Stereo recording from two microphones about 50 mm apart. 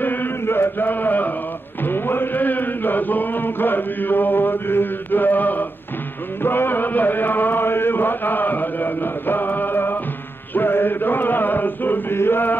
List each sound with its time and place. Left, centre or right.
0.0 s chant: left
6.4 s chant: left